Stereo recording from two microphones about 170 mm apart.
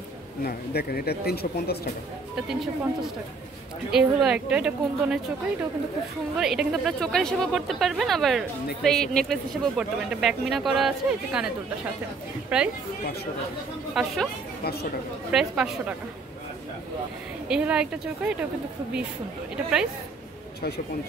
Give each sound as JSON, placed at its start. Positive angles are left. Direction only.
{"t": 0.4, "sound": "speech", "side_deg": 65}
{"t": 2.3, "sound": "speech", "side_deg": 0}
{"t": 6.3, "sound": "a woman's voice", "side_deg": -5}
{"t": 13.9, "sound": "speech", "side_deg": 0}
{"t": 14.6, "sound": "speech", "side_deg": 70}
{"t": 15.3, "sound": "speech", "side_deg": -5}
{"t": 17.5, "sound": "speech", "side_deg": -5}